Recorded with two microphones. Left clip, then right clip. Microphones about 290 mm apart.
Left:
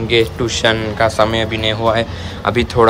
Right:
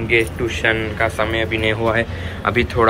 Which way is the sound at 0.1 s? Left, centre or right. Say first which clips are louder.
Left 3 dB; centre.